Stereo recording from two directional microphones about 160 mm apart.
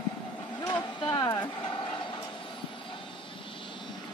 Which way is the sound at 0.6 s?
30° left (ahead or behind).